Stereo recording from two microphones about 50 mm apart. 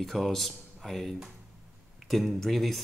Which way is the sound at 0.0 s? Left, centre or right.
Centre.